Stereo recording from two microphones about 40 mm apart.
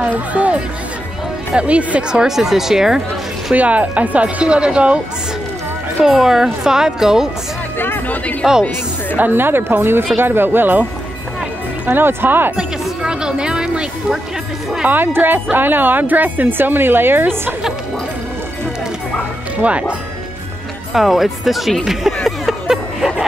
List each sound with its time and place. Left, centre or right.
0.0 s speech: right
2.2 s speech: centre
3.5 s speech: right
6.0 s speech: centre
8.4 s speech: centre
9.2 s speech: right
11.9 s speech: right
13.0 s speech: right
14.9 s speech: right
19.6 s speech: right
20.9 s speech: centre
21.8 s a sound: centre